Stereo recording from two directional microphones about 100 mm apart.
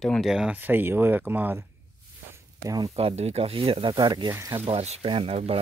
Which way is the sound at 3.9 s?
45° right (ahead or behind).